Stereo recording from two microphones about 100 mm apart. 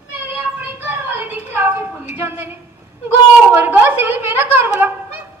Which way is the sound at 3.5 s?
20° right (ahead or behind).